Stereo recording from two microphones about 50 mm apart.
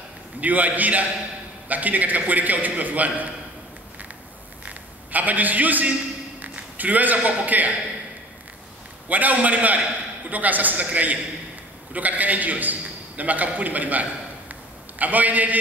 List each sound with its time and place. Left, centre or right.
0.4 s a man's voice: right
4.6 s a man's voice: right
9.1 s a man's voice: right
14.5 s a sound: right